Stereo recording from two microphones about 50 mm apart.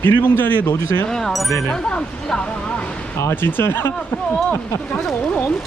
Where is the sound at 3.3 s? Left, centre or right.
Left.